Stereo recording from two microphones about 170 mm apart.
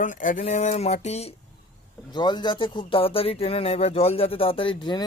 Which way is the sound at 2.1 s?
25° left (ahead or behind).